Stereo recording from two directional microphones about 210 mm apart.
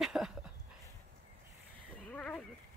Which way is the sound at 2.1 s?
5° left (ahead or behind).